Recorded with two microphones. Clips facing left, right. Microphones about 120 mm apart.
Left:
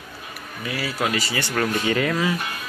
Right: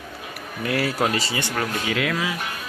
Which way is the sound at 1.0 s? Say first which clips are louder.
Right 1 dB; 30° right (ahead or behind).